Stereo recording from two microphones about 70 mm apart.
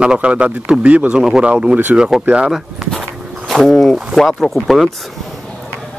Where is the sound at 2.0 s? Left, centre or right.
Centre.